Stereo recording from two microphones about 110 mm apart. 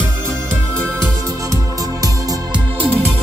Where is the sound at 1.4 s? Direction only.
35° right (ahead or behind).